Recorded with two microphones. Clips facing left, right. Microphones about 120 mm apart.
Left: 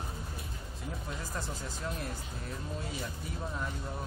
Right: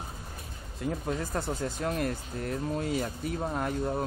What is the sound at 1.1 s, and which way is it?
Speech, 65° right (ahead or behind).